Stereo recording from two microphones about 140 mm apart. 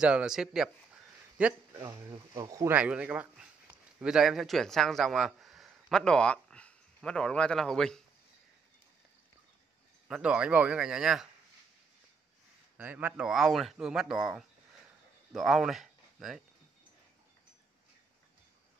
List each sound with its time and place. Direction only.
0.0 s speech: 5° right (ahead or behind)
1.8 s speech: 25° right (ahead or behind)
2.7 s speech: 10° right (ahead or behind)
10.0 s speech: 5° right (ahead or behind)
12.7 s speech: 15° right (ahead or behind)